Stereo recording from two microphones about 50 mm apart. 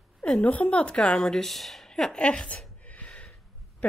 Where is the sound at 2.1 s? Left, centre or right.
Left.